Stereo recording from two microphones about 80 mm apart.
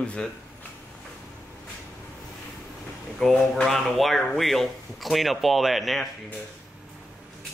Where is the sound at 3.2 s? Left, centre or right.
Centre.